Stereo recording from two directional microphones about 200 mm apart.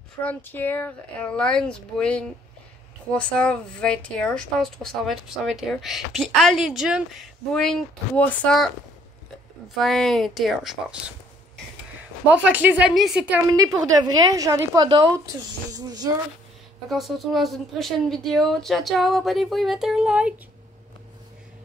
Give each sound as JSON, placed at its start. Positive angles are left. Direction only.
{"t": 0.2, "sound": "a woman's voice", "side_deg": 10}
{"t": 9.8, "sound": "a woman's voice", "side_deg": 0}
{"t": 12.4, "sound": "a woman's voice", "side_deg": -10}
{"t": 13.5, "sound": "a woman's voice", "side_deg": -20}
{"t": 16.9, "sound": "a woman's voice", "side_deg": 0}